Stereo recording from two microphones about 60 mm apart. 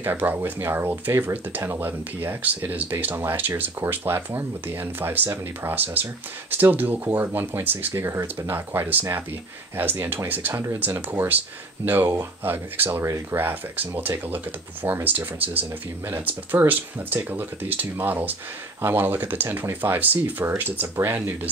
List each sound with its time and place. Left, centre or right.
0.0 s speech: right
8.0 s speech: right
10.5 s speech: right
10.8 s speech: right
13.0 s speech: right
13.4 s speech: right